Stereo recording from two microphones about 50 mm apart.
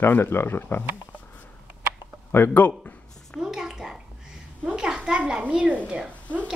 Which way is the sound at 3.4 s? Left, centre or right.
Centre.